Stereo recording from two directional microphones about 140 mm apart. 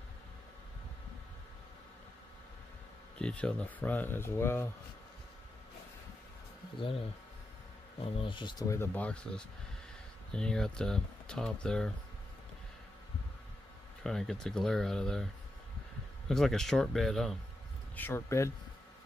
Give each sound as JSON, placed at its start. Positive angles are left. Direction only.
{"t": 3.2, "sound": "speech", "side_deg": 5}
{"t": 8.0, "sound": "speech", "side_deg": 40}
{"t": 8.9, "sound": "speech", "side_deg": 10}
{"t": 14.0, "sound": "speech", "side_deg": 5}
{"t": 16.3, "sound": "speech", "side_deg": 5}
{"t": 17.9, "sound": "speech", "side_deg": 15}